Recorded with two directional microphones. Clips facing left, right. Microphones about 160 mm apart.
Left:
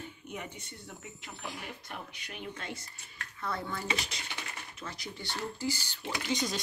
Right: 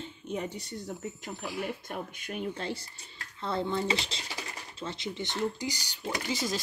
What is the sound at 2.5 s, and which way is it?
Speech, 30° right (ahead or behind).